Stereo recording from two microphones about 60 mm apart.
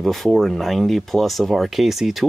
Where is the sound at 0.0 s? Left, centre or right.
Centre.